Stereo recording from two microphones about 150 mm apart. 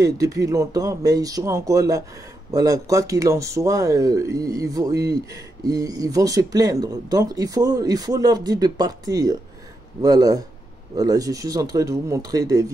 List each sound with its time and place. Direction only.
0.0 s speech: 20° right (ahead or behind)